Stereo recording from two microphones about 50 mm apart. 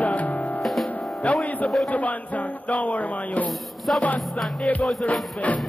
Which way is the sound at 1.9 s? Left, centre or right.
Left.